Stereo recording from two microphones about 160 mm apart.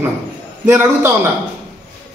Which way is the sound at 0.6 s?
15° right (ahead or behind).